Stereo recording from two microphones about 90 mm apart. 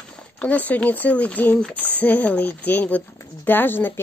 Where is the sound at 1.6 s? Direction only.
15° left (ahead or behind).